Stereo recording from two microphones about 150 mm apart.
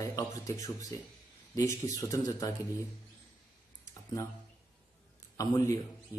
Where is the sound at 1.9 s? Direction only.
25° left (ahead or behind).